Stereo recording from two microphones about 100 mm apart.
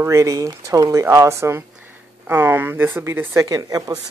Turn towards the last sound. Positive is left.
turn(degrees=-40)  # may be behind; listen again after turning